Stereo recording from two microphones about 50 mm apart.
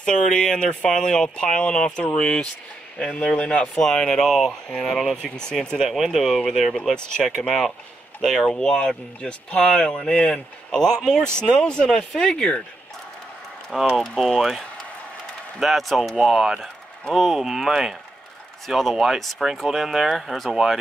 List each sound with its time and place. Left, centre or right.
0.0 s speech: centre
3.8 s speech: centre
5.8 s speech: centre
8.7 s speech: left
13.9 s speech: centre
15.6 s speech: centre